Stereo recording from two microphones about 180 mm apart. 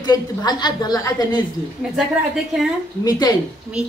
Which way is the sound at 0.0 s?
20° left (ahead or behind).